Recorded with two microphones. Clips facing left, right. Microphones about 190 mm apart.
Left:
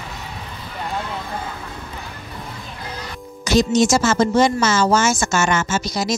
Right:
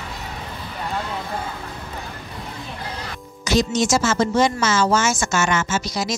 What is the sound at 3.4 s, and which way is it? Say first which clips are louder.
A woman's voice: left 4 dB; 35° left (ahead or behind).